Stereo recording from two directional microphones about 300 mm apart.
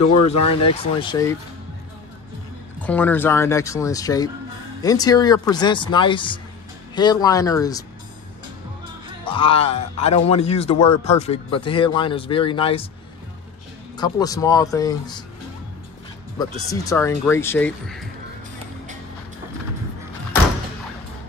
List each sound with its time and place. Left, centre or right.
0.0 s speech: left
0.6 s speech: centre
2.8 s speech: centre
9.2 s speech: centre
13.9 s speech: centre
16.8 s speech: centre